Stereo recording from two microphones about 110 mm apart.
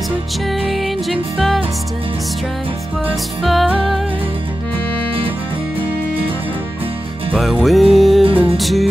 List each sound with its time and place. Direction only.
0.5 s music: centre (ahead or behind)
3.4 s music: centre (ahead or behind)
7.3 s music: centre (ahead or behind)
8.2 s music: 55° right (ahead or behind)
8.5 s music: centre (ahead or behind)